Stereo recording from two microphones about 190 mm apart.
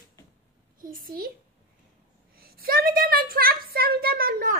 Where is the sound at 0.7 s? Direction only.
45° right (ahead or behind).